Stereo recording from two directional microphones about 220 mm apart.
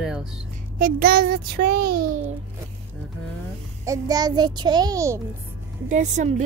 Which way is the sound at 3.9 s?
15° right (ahead or behind).